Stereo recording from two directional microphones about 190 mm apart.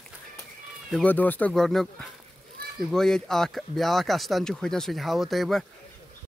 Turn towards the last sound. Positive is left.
turn(degrees=0)  # may be behind; listen again after turning